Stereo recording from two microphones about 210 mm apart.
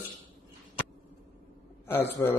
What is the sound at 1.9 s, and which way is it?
Speech, 10° left (ahead or behind).